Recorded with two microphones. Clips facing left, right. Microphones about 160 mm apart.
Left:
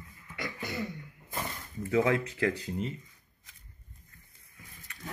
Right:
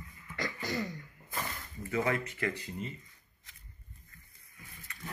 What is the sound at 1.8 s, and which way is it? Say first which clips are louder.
Speech: left 5 dB; 75° left (ahead or behind).